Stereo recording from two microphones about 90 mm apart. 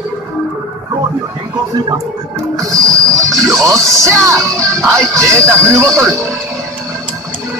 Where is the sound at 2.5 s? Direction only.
40° right (ahead or behind).